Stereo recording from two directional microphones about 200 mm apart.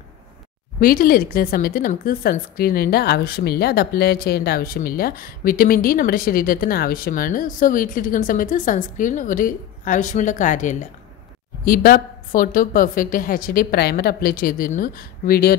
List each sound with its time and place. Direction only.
0.7 s a woman's voice: 45° left (ahead or behind)